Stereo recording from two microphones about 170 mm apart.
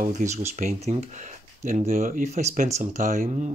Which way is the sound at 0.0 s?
45° right (ahead or behind).